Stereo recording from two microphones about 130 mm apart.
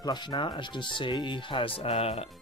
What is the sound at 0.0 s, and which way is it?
Speech, 35° left (ahead or behind).